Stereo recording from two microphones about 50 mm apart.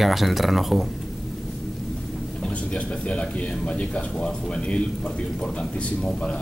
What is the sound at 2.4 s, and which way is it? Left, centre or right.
Speech, left.